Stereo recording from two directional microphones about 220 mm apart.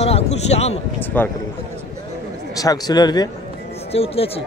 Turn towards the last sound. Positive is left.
turn(degrees=25)  # may be behind; listen again after turning